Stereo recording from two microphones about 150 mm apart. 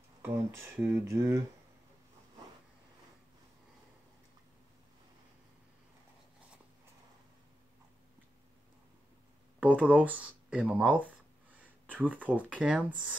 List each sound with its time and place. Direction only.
0.2 s a sound: 20° right (ahead or behind)
0.7 s speech: 15° right (ahead or behind)
9.6 s speech: 10° right (ahead or behind)